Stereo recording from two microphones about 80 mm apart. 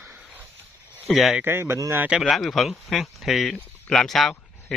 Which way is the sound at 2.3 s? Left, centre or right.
Centre.